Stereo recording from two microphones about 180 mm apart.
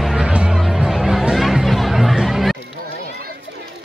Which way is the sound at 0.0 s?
5° right (ahead or behind).